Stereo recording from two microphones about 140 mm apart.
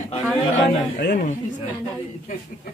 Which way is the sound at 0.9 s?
90° left.